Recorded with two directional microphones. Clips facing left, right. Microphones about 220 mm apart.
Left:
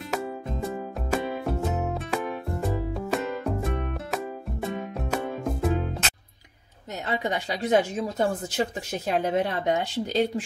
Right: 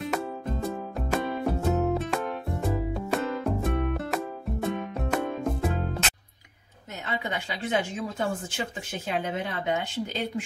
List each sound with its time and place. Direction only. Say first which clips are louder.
0.1 s music: even; centre (ahead or behind)
7.1 s speech: left 4 dB; 35° left (ahead or behind)